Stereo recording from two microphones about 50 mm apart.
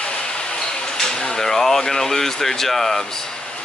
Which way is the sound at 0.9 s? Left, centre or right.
Centre.